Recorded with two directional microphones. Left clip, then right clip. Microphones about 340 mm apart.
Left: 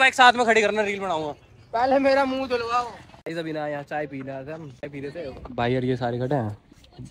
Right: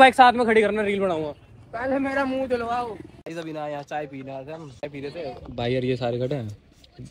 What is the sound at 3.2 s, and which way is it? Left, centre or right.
Speech, centre.